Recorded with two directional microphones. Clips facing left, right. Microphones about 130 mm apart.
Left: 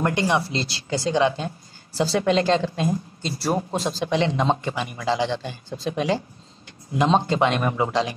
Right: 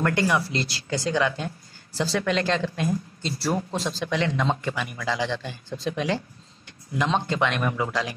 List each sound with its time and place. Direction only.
0.0 s a man's voice: 20° left (ahead or behind)
4.0 s a man's voice: 25° left (ahead or behind)